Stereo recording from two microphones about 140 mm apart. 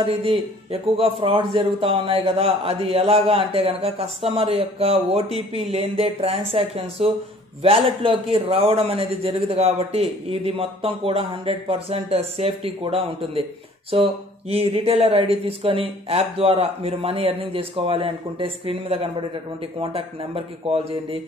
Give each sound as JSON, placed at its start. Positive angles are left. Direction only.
{"t": 0.0, "sound": "a man's voice", "side_deg": -45}